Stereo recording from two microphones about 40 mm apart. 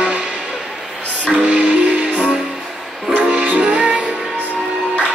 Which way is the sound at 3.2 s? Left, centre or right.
Right.